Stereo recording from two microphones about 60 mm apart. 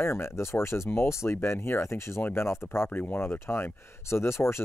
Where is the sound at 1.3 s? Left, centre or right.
Left.